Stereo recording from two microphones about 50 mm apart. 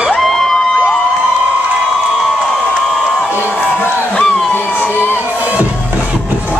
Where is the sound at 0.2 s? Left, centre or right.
Centre.